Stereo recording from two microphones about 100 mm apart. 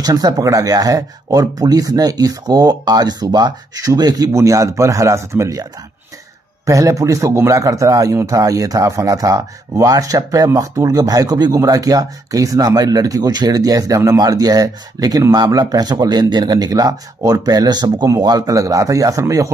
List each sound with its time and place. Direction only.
0.0 s a man's voice: 40° right (ahead or behind)
6.6 s a man's voice: 30° right (ahead or behind)